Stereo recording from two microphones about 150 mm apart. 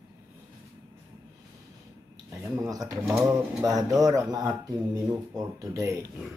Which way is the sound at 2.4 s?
20° right (ahead or behind).